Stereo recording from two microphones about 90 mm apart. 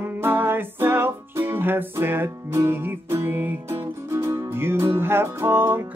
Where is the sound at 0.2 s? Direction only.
25° right (ahead or behind).